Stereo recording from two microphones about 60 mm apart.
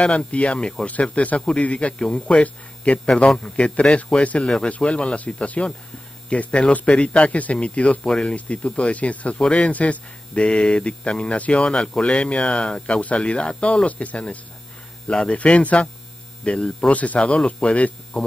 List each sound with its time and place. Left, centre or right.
0.0 s speech: centre